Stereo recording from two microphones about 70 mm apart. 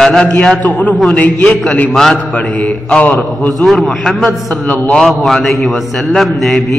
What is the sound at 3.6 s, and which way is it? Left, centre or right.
A man's voice, centre.